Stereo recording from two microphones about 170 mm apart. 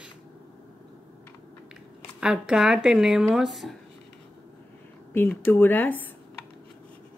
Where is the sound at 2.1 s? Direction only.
5° right (ahead or behind).